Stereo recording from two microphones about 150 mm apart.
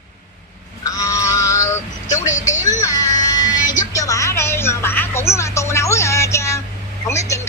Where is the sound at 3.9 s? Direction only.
20° left (ahead or behind).